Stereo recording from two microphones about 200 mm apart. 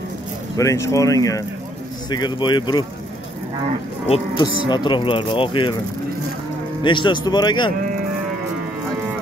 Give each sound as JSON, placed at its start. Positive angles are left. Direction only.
{"t": 0.6, "sound": "speech", "side_deg": 15}
{"t": 4.1, "sound": "speech", "side_deg": 20}
{"t": 6.8, "sound": "speech", "side_deg": 25}